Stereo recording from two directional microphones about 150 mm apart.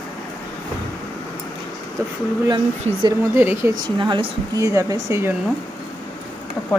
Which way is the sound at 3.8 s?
30° right (ahead or behind).